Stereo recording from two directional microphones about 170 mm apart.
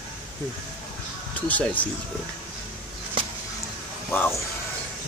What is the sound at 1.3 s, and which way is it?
Speech, 10° left (ahead or behind).